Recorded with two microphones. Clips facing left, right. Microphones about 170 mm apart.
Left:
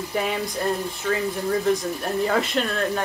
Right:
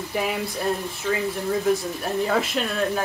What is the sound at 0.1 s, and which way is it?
Speech, 5° right (ahead or behind).